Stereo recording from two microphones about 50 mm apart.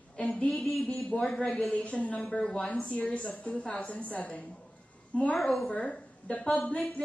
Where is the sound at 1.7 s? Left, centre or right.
Left.